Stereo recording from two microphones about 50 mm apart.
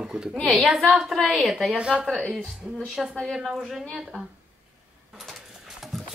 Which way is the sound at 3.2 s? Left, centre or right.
Centre.